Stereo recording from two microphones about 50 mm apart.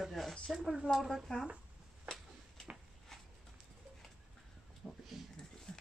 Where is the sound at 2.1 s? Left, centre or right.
Centre.